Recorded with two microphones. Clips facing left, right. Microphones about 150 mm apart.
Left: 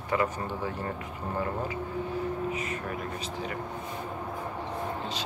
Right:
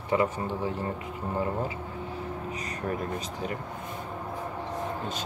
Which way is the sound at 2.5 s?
40° right (ahead or behind).